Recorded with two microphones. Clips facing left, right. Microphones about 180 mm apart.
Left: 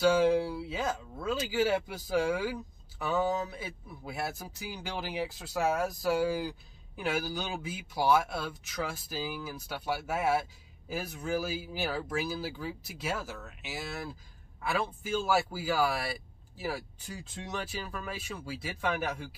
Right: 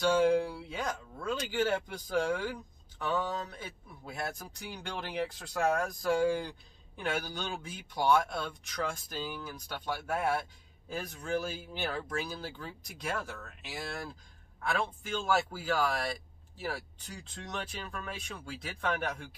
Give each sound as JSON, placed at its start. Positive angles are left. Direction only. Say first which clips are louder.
{"t": 0.0, "sound": "speech", "louder": "left 1 dB", "side_deg": 5}